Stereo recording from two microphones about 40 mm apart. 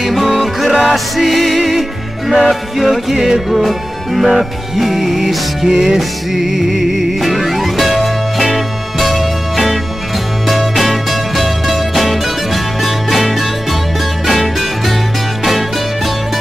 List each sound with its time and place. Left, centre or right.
0.0 s music: centre